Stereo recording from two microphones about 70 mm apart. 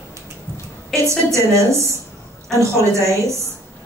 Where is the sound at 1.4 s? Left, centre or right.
Right.